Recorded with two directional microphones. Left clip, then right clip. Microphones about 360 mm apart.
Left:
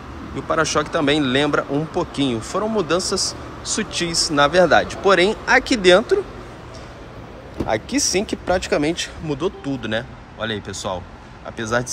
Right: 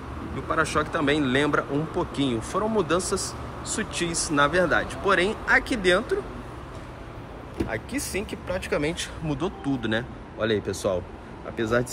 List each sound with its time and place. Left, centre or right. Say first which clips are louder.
0.5 s speech: left 5 dB; centre
7.7 s speech: left 13 dB; centre